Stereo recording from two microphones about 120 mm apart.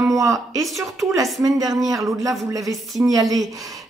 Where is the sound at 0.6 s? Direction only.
Centre (ahead or behind).